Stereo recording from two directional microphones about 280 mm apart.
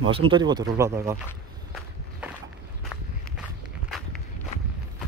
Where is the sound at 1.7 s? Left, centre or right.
Centre.